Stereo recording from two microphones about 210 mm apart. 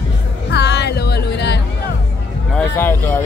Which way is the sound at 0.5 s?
55° left (ahead or behind).